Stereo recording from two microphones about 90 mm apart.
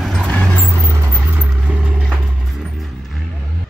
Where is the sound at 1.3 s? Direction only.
20° right (ahead or behind).